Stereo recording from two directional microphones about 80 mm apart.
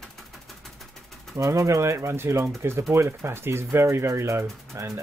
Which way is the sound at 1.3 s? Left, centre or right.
Right.